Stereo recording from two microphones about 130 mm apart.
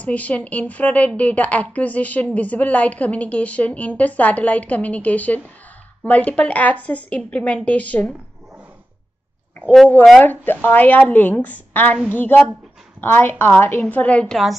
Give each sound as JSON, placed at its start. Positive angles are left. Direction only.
{"t": 0.0, "sound": "a woman's voice", "side_deg": 10}
{"t": 10.2, "sound": "a woman's voice", "side_deg": 15}